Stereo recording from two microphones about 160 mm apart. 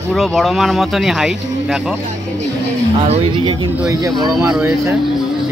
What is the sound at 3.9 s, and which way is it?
Speech, 20° right (ahead or behind).